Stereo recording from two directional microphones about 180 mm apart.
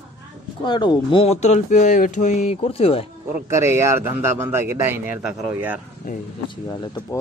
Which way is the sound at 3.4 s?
15° right (ahead or behind).